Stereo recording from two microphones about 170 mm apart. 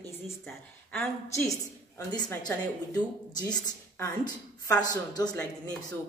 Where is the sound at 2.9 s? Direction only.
25° left (ahead or behind).